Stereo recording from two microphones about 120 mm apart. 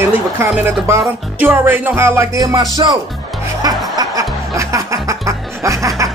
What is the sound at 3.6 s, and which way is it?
Music, 30° right (ahead or behind).